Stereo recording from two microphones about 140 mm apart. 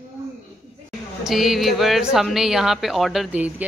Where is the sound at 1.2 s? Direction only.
Centre (ahead or behind).